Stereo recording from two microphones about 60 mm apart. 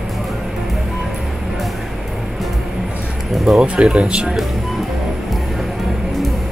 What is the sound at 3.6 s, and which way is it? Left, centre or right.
Speech, centre.